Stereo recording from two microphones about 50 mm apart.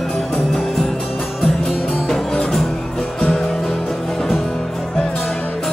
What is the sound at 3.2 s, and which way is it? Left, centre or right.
Music, centre.